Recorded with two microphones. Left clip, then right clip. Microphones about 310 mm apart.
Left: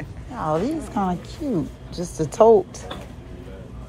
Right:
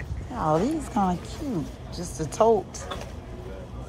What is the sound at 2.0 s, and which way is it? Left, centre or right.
Speech, right.